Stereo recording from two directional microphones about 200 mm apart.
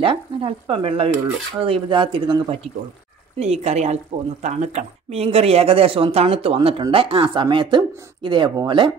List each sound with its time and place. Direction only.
0.0 s speech: 25° right (ahead or behind)